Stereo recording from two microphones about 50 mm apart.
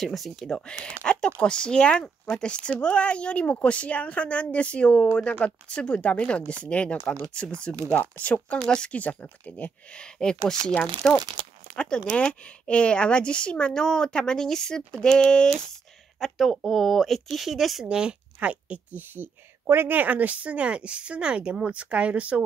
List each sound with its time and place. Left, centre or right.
0.0 s speech: centre
0.5 s speech: centre
8.5 s speech: centre
8.9 s speech: left
16.2 s speech: centre
17.8 s speech: centre